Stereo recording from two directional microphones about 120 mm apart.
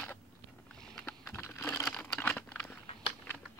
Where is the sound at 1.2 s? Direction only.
20° left (ahead or behind).